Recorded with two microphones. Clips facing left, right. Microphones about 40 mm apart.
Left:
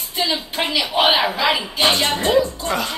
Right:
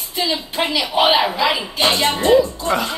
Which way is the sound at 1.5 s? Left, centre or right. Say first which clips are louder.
Even; centre.